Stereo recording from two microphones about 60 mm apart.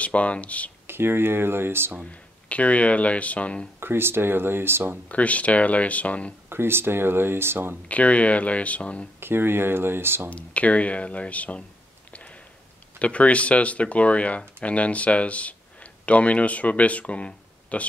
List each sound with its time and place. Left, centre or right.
0.0 s speech: left
0.8 s speech: right
2.0 s speech: left
3.8 s speech: right
5.0 s speech: left
6.5 s speech: right
7.9 s speech: left
9.2 s speech: right
10.3 s speech: left
12.1 s a sound: left
13.0 s speech: left